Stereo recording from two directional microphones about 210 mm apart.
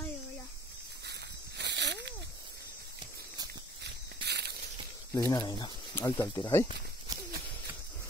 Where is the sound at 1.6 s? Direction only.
55° right (ahead or behind).